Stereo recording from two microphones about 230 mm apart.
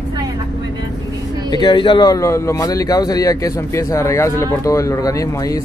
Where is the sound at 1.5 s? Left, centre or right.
Centre.